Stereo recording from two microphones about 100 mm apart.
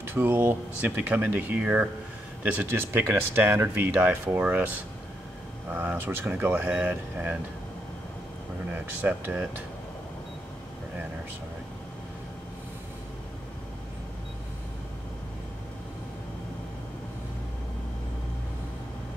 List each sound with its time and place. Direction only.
0.0 s speech: 20° right (ahead or behind)
5.7 s speech: 20° right (ahead or behind)
8.7 s speech: 15° right (ahead or behind)